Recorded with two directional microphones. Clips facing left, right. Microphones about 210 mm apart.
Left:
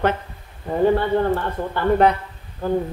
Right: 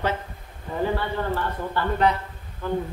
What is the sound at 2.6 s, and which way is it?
Speech, 40° left (ahead or behind).